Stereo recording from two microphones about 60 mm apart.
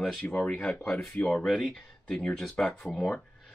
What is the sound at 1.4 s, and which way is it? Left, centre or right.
Speech, centre.